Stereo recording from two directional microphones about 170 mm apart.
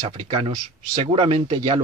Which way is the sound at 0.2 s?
35° right (ahead or behind).